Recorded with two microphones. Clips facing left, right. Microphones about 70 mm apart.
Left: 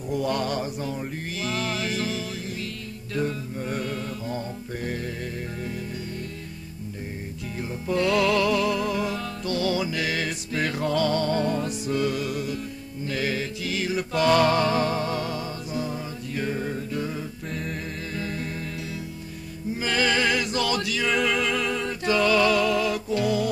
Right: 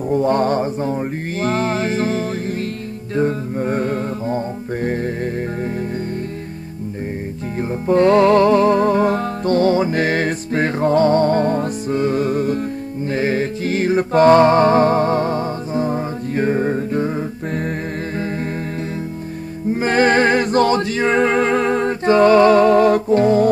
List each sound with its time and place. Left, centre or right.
0.1 s mantra: right
3.2 s music: right
7.8 s music: right
19.7 s a sound: right